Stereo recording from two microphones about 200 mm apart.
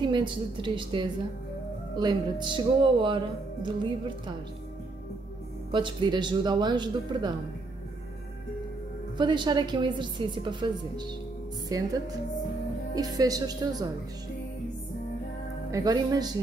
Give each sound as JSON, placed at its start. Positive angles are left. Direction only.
{"t": 0.0, "sound": "a woman's voice", "side_deg": -25}
{"t": 5.7, "sound": "a woman's voice", "side_deg": -25}
{"t": 9.2, "sound": "a woman's voice", "side_deg": -20}
{"t": 12.9, "sound": "a woman's voice", "side_deg": -20}
{"t": 15.7, "sound": "a woman's voice", "side_deg": -20}